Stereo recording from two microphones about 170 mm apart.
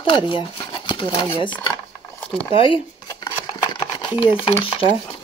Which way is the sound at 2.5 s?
30° left (ahead or behind).